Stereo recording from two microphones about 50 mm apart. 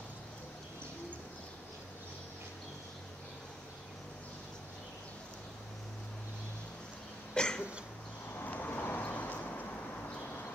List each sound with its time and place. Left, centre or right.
7.3 s cough: centre
8.4 s vehicle: left